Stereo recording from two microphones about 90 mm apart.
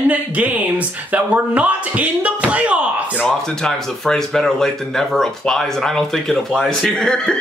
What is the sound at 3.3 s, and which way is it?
Speech, 5° left (ahead or behind).